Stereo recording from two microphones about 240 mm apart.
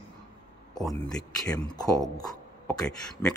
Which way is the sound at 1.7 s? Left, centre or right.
Centre.